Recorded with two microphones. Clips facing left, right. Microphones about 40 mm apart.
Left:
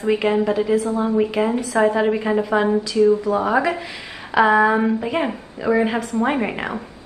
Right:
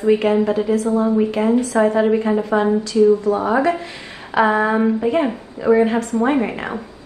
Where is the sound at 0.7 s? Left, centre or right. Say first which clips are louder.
Right 2 dB; centre.